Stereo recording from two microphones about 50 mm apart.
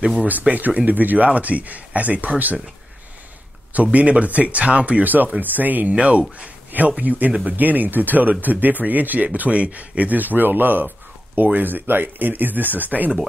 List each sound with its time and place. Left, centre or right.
0.3 s speech: right
3.7 s speech: right